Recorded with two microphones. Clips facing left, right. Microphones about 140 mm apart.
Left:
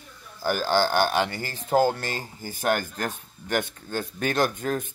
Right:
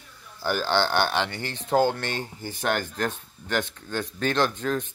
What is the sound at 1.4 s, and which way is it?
A man's voice, 5° left (ahead or behind).